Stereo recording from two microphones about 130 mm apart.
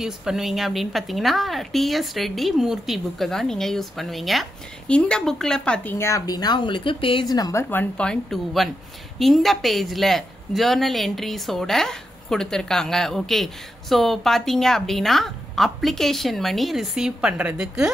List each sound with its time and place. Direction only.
0.0 s a woman's voice: 5° right (ahead or behind)
5.9 s speech: 20° left (ahead or behind)
7.7 s a woman's voice: 10° left (ahead or behind); by 17.8 s 10° right (ahead or behind)